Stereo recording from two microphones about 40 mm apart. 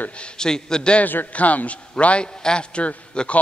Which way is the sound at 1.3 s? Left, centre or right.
Left.